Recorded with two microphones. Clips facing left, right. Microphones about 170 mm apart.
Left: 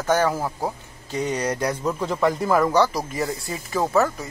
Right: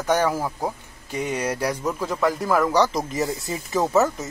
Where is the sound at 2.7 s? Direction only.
20° right (ahead or behind).